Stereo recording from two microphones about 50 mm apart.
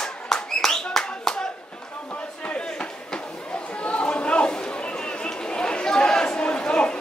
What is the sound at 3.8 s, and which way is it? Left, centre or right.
Chatter, left.